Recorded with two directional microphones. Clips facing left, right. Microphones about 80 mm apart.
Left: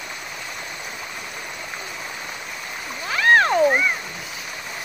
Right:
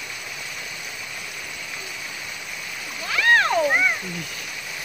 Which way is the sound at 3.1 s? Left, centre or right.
Left.